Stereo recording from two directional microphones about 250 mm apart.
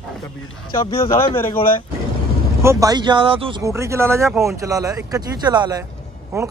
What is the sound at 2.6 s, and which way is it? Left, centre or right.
Speech, centre.